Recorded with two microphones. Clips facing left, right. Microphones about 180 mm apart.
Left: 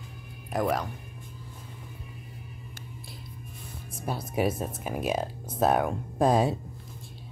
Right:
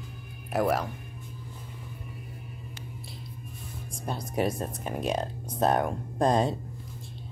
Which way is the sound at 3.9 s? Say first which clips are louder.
Left 1 dB; 5° left (ahead or behind).